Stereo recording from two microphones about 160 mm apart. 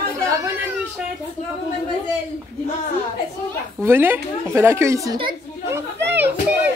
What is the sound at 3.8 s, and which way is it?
Speech, 15° right (ahead or behind).